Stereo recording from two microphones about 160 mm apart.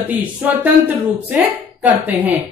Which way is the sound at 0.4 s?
10° right (ahead or behind).